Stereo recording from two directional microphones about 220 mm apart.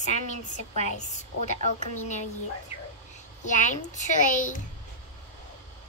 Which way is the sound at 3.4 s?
35° left (ahead or behind).